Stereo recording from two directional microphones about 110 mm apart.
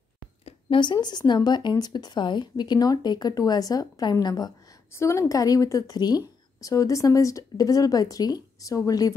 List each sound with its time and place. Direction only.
0.5 s a sound: 50° left (ahead or behind)
1.0 s a woman's voice: 40° left (ahead or behind)
4.9 s a woman's voice: 25° left (ahead or behind)